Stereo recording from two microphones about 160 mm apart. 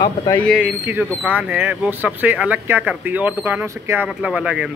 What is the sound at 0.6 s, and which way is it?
Speech, 10° right (ahead or behind).